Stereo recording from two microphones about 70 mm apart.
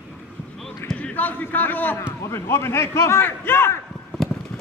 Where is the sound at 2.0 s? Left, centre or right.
Left.